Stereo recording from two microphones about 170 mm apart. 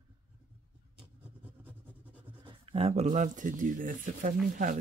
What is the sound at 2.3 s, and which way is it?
Speech, 30° right (ahead or behind).